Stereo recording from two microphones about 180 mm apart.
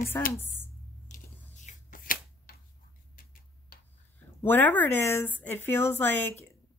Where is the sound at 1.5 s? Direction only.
45° left (ahead or behind).